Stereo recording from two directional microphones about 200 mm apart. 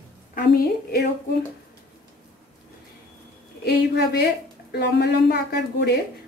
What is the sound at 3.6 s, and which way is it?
A woman's voice, 55° left (ahead or behind).